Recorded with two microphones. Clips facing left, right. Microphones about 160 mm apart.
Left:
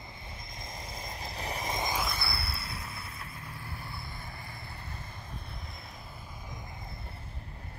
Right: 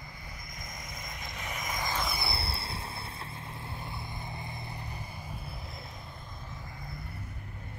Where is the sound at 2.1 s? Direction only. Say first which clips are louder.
Right 2 dB; 25° right (ahead or behind).